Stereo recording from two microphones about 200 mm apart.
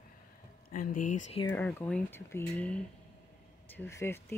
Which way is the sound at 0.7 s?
40° left (ahead or behind).